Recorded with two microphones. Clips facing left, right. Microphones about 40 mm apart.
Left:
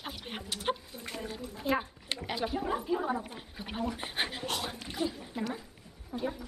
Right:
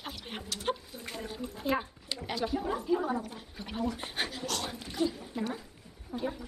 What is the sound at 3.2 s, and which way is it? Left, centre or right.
Speech, left.